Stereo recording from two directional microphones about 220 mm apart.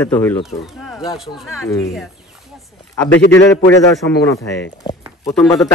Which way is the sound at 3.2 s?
55° left (ahead or behind).